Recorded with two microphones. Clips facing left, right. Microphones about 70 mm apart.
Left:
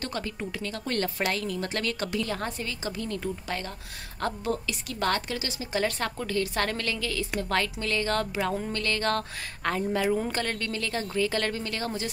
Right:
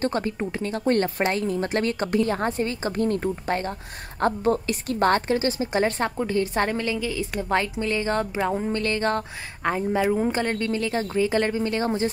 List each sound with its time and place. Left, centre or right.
0.0 s a woman's voice: right